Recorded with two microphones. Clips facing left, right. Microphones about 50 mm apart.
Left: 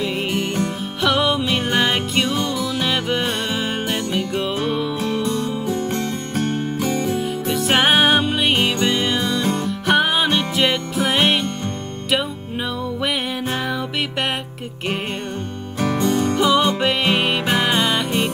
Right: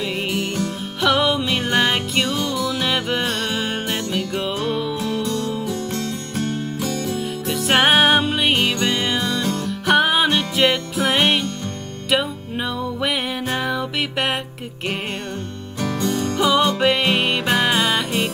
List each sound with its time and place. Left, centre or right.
0.0 s music: centre
5.1 s music: centre
7.2 s music: centre
9.4 s music: centre
9.7 s music: centre
15.8 s music: left
16.3 s music: centre